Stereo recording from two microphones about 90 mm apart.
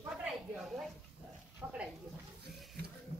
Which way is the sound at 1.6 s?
15° right (ahead or behind).